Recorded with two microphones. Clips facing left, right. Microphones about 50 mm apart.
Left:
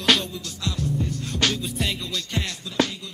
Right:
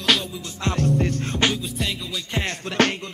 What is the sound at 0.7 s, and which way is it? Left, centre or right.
Music, right.